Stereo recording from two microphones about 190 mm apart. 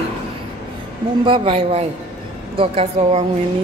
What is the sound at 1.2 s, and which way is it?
A woman's voice, 30° right (ahead or behind).